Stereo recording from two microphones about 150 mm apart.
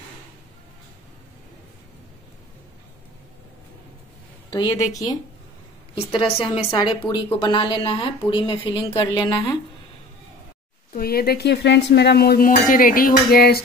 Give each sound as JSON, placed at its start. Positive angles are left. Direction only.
{"t": 4.5, "sound": "a woman's voice", "side_deg": 25}
{"t": 6.1, "sound": "a woman's voice", "side_deg": 40}
{"t": 10.9, "sound": "speech", "side_deg": 85}